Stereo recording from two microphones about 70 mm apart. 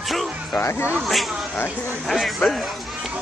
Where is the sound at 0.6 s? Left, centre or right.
Left.